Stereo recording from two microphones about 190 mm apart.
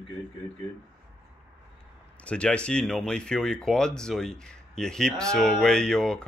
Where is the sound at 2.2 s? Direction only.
5° left (ahead or behind).